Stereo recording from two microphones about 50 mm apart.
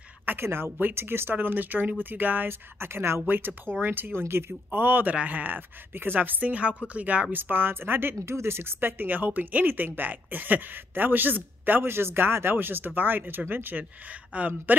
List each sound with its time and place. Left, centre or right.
0.2 s a woman's voice: right
2.8 s speech: right
4.6 s speech: right
5.1 s speech: right
7.3 s speech: right
14.3 s speech: right